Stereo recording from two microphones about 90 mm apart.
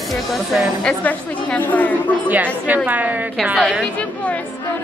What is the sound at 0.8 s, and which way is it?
A woman's voice, 10° left (ahead or behind).